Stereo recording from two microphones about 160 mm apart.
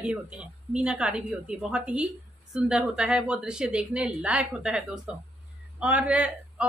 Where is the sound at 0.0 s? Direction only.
10° right (ahead or behind).